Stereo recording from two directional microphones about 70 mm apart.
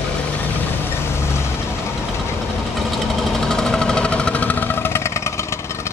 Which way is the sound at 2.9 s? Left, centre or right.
Centre.